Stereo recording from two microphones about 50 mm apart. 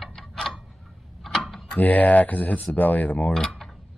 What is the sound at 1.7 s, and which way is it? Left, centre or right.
Speech, left.